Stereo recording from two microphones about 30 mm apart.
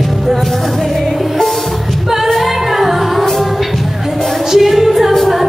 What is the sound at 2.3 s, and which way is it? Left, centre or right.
Music, centre.